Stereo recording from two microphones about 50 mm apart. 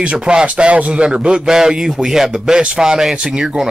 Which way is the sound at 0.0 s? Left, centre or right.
Centre.